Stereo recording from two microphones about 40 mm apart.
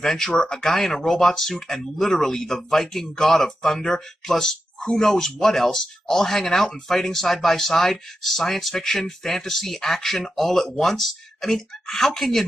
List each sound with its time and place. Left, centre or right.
0.0 s speech: centre